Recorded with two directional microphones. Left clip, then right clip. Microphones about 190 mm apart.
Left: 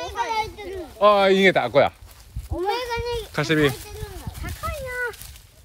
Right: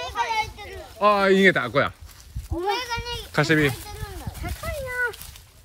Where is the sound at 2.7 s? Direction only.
40° left (ahead or behind).